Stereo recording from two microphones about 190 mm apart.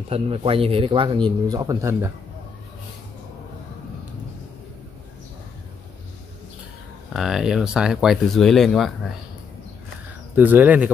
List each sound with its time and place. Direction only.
0.1 s speech: 30° right (ahead or behind); by 2.0 s 15° right (ahead or behind)
7.2 s speech: centre (ahead or behind)
10.3 s speech: 10° right (ahead or behind)